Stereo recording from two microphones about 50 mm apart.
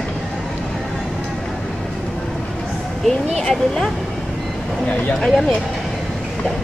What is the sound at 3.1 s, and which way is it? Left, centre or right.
Speech, centre.